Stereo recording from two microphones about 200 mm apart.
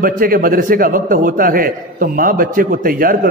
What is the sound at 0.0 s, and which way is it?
A man's voice, 45° right (ahead or behind).